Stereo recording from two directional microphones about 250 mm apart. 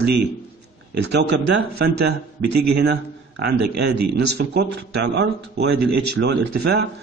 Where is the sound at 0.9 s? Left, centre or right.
Right.